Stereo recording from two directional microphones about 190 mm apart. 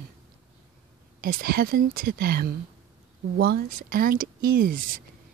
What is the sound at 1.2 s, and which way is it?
Speech, 50° right (ahead or behind).